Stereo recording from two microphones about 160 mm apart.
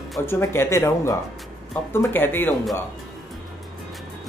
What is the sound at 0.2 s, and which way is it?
Speech, 15° left (ahead or behind).